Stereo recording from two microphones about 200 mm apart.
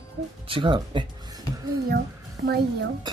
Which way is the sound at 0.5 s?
25° right (ahead or behind).